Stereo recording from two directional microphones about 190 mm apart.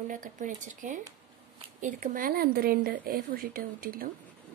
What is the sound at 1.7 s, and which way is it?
Speech, 40° right (ahead or behind).